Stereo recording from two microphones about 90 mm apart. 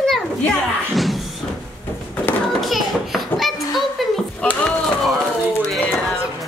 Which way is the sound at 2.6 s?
Centre (ahead or behind).